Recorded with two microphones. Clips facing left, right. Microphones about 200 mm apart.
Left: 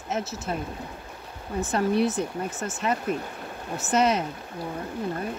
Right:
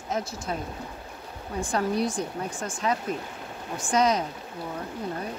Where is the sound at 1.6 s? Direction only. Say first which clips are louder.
Left 3 dB; 5° left (ahead or behind).